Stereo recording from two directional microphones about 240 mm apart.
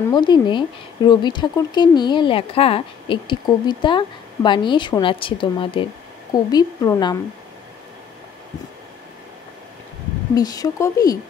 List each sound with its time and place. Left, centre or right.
0.1 s speech: centre
10.3 s speech: centre